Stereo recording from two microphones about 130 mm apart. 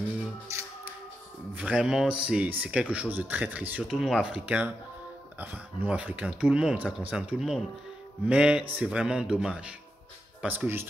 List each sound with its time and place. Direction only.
0.5 s music: 20° right (ahead or behind)
1.5 s speech: 10° right (ahead or behind)